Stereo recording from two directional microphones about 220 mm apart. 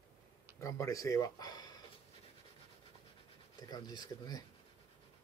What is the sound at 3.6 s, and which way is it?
Speech, 20° left (ahead or behind).